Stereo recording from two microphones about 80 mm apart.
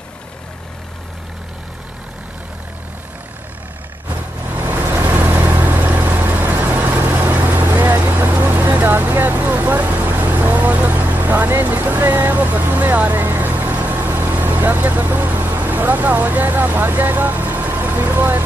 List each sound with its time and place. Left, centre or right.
4.6 s vehicle: right